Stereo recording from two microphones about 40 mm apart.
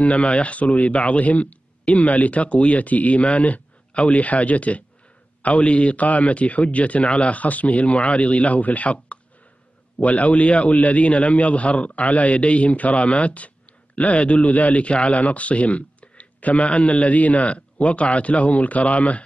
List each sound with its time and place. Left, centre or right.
0.0 s a man's voice: left